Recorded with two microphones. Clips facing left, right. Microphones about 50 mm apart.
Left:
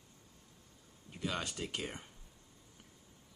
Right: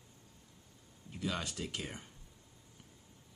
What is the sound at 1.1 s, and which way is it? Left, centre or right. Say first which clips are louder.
Speech: even; centre.